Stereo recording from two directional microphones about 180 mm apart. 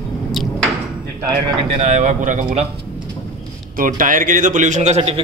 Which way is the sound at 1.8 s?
40° right (ahead or behind).